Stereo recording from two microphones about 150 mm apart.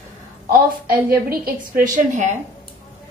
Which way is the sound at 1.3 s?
65° right (ahead or behind).